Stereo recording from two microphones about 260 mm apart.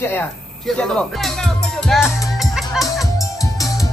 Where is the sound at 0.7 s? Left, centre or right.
Centre.